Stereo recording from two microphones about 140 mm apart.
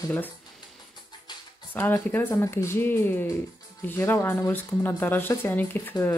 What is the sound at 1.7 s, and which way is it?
A woman's voice, 15° left (ahead or behind).